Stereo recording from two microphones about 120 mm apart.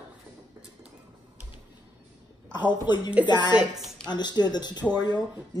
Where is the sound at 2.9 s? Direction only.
40° left (ahead or behind).